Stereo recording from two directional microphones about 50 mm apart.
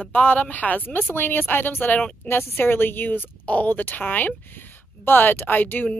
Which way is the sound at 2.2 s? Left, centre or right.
Left.